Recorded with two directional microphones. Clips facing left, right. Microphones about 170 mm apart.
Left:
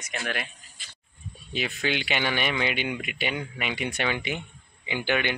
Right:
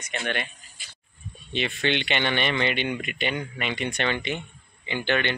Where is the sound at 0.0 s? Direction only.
Centre (ahead or behind).